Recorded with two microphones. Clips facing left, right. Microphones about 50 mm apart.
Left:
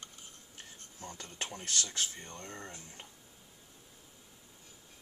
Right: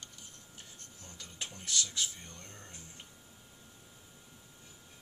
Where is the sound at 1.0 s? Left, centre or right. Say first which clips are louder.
Left 4 dB; left.